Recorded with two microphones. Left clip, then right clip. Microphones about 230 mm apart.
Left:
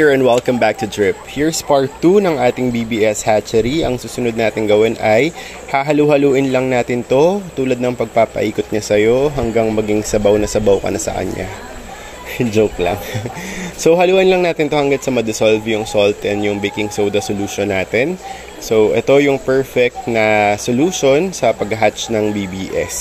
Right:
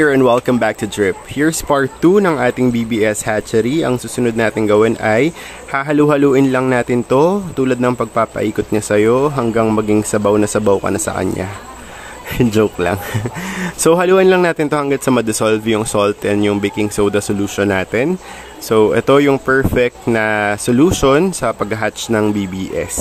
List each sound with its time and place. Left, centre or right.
0.0 s speech: centre